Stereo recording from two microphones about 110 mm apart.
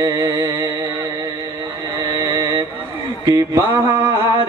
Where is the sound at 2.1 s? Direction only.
30° right (ahead or behind).